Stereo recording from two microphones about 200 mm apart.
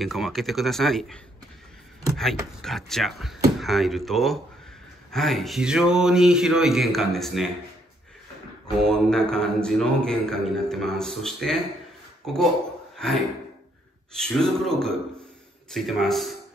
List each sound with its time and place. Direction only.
0.0 s a man's voice: centre (ahead or behind)
8.8 s a man's voice: 5° left (ahead or behind)
12.9 s a sound: centre (ahead or behind)
14.1 s a man's voice: 5° left (ahead or behind)